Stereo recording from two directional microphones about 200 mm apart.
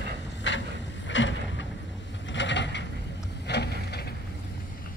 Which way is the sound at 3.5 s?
55° left (ahead or behind).